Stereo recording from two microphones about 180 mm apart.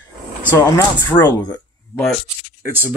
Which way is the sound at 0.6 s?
20° left (ahead or behind).